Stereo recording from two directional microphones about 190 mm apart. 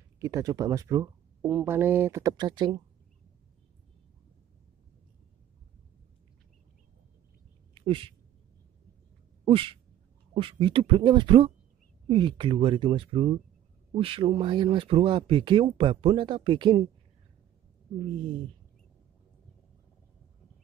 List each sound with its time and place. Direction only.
0.2 s speech: 15° right (ahead or behind)
7.7 s a sound: 25° right (ahead or behind)
9.4 s speech: 30° right (ahead or behind)